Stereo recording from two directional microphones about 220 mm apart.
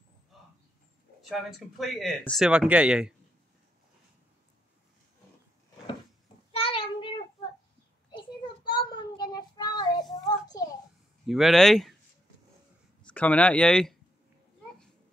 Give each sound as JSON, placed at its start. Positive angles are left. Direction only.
{"t": 1.3, "sound": "speech", "side_deg": 0}
{"t": 6.5, "sound": "child singing", "side_deg": 25}
{"t": 8.1, "sound": "child singing", "side_deg": 20}
{"t": 10.1, "sound": "a sound", "side_deg": 15}
{"t": 11.2, "sound": "speech", "side_deg": 0}
{"t": 13.0, "sound": "speech", "side_deg": 5}